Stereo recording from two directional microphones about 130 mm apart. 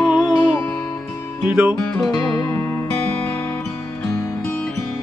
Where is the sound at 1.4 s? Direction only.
20° right (ahead or behind).